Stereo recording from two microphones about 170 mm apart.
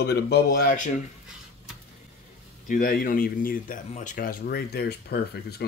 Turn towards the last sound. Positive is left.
turn(degrees=70)  # may be behind; listen again after turning